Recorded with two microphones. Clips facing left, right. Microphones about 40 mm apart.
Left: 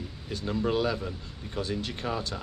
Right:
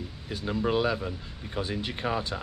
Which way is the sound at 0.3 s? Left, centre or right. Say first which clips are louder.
Right 1 dB; centre.